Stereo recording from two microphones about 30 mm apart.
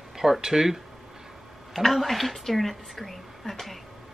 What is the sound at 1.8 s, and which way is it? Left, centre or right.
A man's voice, centre.